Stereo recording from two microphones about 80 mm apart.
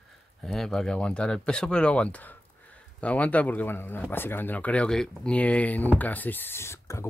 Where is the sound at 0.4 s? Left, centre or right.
Centre.